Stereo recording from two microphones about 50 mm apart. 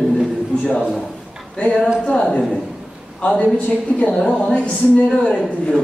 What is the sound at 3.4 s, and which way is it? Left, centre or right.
A man's voice, left.